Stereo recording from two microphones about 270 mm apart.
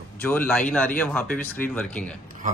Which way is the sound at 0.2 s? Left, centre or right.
Centre.